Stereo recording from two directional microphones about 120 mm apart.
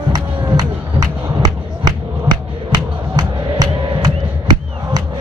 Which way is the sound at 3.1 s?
30° right (ahead or behind).